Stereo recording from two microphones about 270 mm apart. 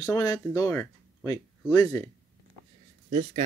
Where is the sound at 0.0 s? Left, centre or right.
Centre.